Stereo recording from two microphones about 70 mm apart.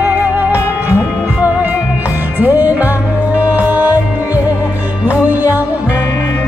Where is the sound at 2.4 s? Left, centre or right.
Right.